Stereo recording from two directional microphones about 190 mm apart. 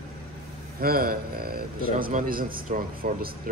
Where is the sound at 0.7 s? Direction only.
50° right (ahead or behind).